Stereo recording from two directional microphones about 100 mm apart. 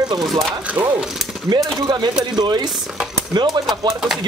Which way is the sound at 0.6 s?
15° right (ahead or behind).